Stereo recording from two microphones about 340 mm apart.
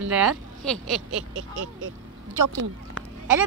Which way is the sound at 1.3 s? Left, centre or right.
Right.